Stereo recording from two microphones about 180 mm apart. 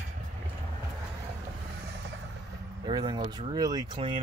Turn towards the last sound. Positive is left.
turn(degrees=-25)  # may be behind; listen again after turning